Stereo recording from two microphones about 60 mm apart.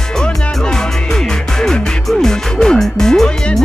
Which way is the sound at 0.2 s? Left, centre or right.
Centre.